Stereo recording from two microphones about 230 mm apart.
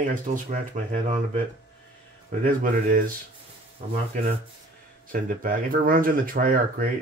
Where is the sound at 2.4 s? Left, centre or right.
Right.